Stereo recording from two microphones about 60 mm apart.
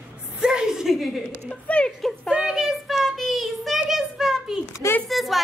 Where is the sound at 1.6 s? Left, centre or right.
Centre.